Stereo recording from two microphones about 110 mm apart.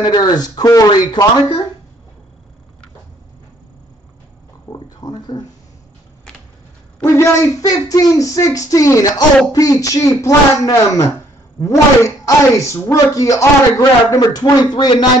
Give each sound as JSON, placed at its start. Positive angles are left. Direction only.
{"t": 0.0, "sound": "a man's voice", "side_deg": 40}
{"t": 4.7, "sound": "a sound", "side_deg": 35}
{"t": 7.0, "sound": "a man's voice", "side_deg": 30}